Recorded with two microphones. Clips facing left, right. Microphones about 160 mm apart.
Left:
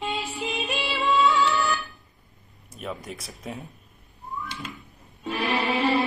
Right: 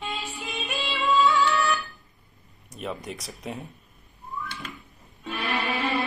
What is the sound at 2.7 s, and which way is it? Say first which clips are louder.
Speech: right 1 dB; centre (ahead or behind).